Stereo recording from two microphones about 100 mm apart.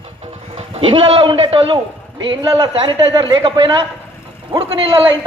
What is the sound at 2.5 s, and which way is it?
Speech, 60° right (ahead or behind).